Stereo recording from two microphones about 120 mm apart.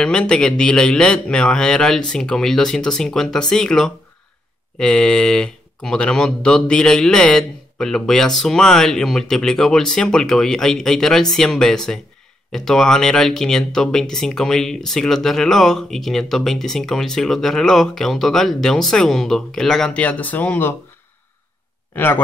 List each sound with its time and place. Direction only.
0.0 s speech: 5° left (ahead or behind)
21.9 s speech: 15° left (ahead or behind)